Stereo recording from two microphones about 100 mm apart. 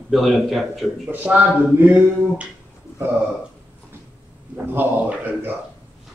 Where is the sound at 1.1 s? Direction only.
15° right (ahead or behind).